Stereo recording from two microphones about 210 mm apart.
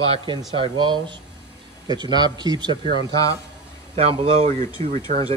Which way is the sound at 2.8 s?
25° left (ahead or behind).